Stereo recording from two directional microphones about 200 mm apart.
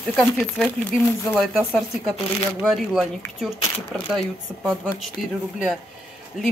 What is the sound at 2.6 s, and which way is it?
Speech, centre (ahead or behind).